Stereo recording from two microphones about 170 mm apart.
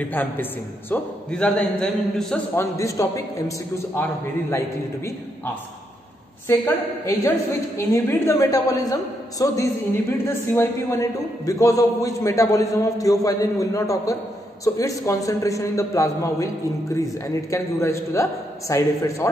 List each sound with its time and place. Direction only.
0.0 s a man's voice: 10° left (ahead or behind)
2.5 s a man's voice: 15° left (ahead or behind)
17.5 s a man's voice: 15° left (ahead or behind)